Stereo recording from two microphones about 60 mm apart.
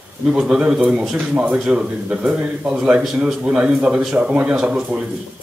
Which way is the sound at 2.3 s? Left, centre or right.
Right.